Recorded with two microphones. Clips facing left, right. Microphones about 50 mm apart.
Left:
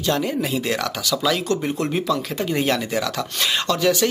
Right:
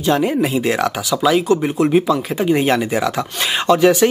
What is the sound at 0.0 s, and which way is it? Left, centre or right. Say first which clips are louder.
Speech: right 6 dB; right.